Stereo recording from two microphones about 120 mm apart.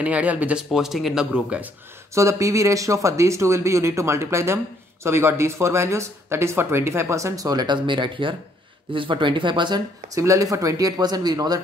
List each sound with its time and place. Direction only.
0.0 s speech: 10° right (ahead or behind)
2.1 s speech: 25° right (ahead or behind)